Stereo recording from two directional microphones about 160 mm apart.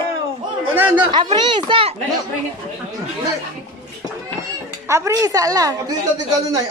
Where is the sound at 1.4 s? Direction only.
30° right (ahead or behind).